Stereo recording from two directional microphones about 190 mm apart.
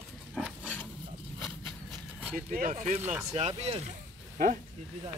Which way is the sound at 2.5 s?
45° right (ahead or behind).